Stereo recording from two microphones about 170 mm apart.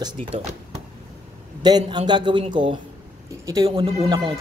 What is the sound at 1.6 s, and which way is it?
A man's voice, 25° right (ahead or behind).